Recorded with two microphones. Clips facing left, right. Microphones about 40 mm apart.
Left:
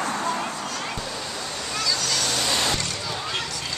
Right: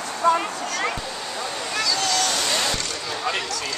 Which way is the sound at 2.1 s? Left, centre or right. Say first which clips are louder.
Right 2 dB; centre.